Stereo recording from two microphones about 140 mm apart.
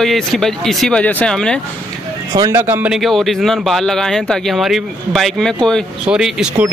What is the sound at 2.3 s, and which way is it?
Speech, 30° right (ahead or behind).